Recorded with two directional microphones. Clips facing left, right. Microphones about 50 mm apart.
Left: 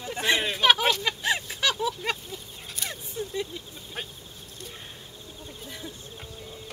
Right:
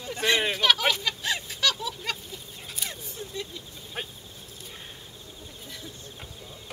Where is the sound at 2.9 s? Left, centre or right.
Centre.